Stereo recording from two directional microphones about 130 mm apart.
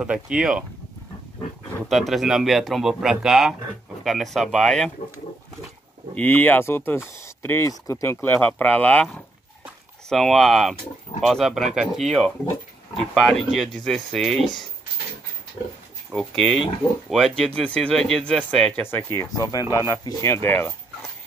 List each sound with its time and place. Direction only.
0.0 s speech: 5° right (ahead or behind)
1.9 s speech: centre (ahead or behind)
6.1 s speech: 15° left (ahead or behind)
16.1 s speech: 5° left (ahead or behind)
19.3 s speech: 30° left (ahead or behind)